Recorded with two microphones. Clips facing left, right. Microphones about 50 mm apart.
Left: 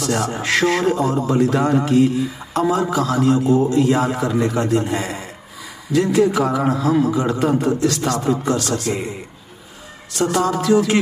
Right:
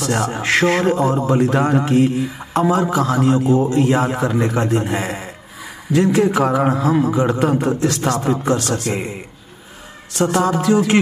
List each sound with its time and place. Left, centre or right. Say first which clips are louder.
0.0 s speech: right 1 dB; right
10.1 s speech: right 2 dB; right